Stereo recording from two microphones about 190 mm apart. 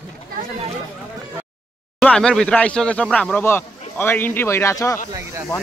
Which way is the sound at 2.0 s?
5° left (ahead or behind).